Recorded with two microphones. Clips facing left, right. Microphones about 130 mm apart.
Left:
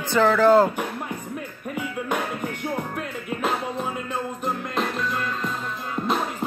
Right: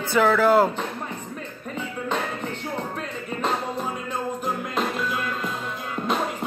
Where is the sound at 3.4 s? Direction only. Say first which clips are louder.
Even; 5° left (ahead or behind).